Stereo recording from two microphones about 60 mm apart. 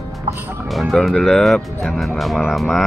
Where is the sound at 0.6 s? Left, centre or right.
Centre.